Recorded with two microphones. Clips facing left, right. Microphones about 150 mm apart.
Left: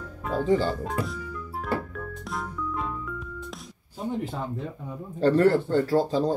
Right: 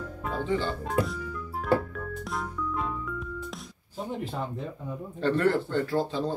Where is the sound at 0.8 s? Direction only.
Centre (ahead or behind).